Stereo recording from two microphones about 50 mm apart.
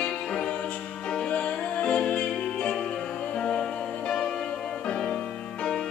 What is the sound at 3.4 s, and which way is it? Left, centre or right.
Music, centre.